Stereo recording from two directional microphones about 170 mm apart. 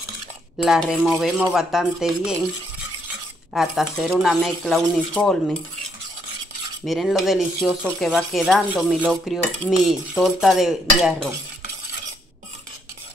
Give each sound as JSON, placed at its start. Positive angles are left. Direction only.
{"t": 0.6, "sound": "speech", "side_deg": 0}
{"t": 3.5, "sound": "speech", "side_deg": 0}
{"t": 6.9, "sound": "speech", "side_deg": 0}